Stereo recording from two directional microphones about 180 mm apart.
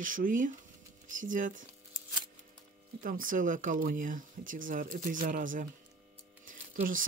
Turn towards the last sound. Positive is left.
turn(degrees=-50)  # may be behind; listen again after turning